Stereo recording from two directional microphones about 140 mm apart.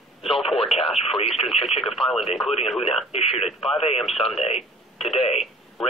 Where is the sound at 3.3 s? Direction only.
45° left (ahead or behind).